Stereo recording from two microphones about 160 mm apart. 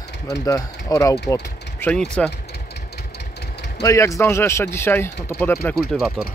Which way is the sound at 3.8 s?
20° left (ahead or behind).